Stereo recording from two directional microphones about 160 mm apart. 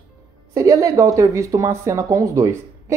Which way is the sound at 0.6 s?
20° right (ahead or behind).